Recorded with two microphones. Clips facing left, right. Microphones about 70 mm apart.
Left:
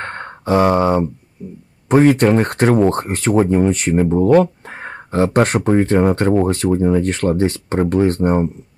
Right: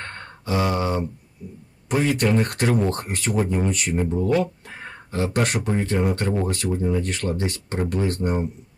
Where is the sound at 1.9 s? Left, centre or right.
Left.